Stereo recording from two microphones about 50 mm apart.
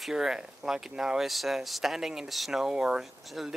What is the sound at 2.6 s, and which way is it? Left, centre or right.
Speech, centre.